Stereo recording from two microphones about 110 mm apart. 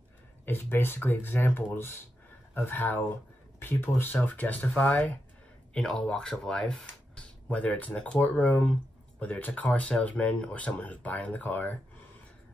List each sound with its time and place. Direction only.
0.5 s speech: 20° left (ahead or behind)